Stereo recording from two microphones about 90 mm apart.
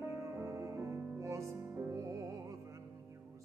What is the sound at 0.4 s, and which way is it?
Music, 35° right (ahead or behind).